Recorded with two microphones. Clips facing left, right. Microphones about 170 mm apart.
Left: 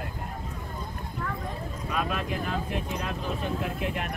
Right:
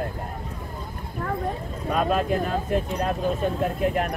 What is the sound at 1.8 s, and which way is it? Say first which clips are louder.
Speech: right 8 dB; 40° right (ahead or behind).